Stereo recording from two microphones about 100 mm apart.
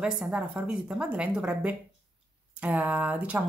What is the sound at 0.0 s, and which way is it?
A woman's voice, 10° right (ahead or behind).